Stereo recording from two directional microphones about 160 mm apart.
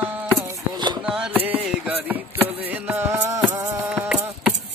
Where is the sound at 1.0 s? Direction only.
10° right (ahead or behind).